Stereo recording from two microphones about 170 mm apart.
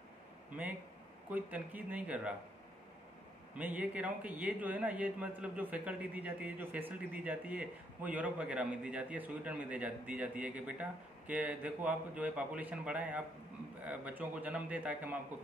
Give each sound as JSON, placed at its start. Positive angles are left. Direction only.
{"t": 1.3, "sound": "a man's voice", "side_deg": -10}
{"t": 3.5, "sound": "a man's voice", "side_deg": -10}